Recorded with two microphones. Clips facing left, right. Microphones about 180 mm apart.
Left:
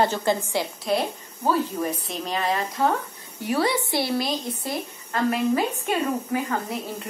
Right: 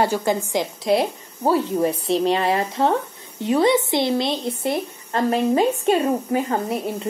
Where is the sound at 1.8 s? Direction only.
30° right (ahead or behind).